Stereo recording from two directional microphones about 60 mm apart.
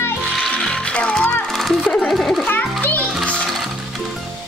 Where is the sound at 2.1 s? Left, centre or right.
Centre.